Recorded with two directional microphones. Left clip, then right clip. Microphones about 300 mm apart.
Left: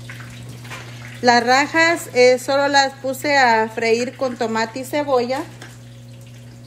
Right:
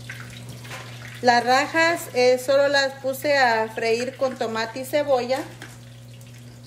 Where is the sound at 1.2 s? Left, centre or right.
Left.